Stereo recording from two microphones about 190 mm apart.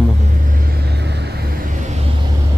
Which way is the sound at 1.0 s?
60° right (ahead or behind).